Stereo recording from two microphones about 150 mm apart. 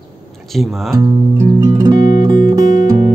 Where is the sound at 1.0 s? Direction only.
20° right (ahead or behind).